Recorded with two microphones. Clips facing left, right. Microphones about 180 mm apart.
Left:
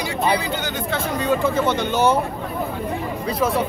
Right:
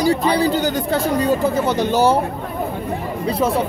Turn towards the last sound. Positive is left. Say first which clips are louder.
# right 2 dB
turn(degrees=-30)  # may be behind; listen again after turning